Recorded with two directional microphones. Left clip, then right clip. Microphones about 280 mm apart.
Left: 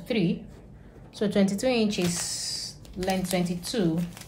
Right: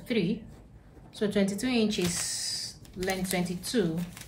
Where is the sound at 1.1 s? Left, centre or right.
Centre.